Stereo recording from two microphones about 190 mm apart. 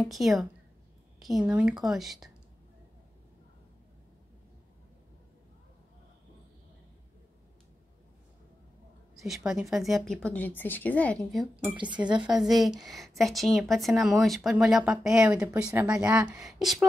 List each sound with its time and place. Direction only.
0.0 s a woman's voice: centre (ahead or behind)
9.5 s a woman's voice: centre (ahead or behind)
11.7 s speech: 25° right (ahead or behind)
12.2 s a woman's voice: centre (ahead or behind)